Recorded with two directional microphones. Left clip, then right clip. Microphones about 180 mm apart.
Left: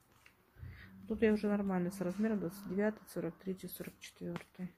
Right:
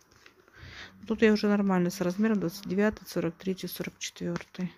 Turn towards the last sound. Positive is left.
turn(degrees=-60)  # may be behind; listen again after turning